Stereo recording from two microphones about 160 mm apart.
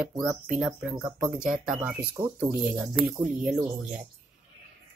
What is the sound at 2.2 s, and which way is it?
Speech, 35° right (ahead or behind).